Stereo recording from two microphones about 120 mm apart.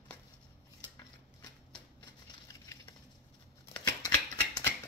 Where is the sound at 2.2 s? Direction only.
35° left (ahead or behind).